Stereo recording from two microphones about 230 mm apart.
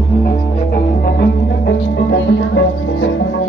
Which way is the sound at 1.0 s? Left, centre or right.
Left.